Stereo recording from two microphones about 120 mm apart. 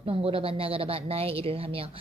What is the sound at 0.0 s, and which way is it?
A woman's voice, 50° right (ahead or behind).